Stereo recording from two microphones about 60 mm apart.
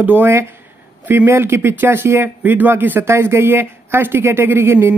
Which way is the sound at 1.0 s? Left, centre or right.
Right.